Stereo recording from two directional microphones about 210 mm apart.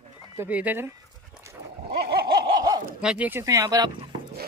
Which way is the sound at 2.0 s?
50° right (ahead or behind).